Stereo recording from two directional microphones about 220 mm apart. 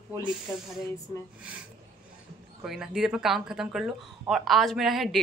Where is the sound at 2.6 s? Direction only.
Centre (ahead or behind).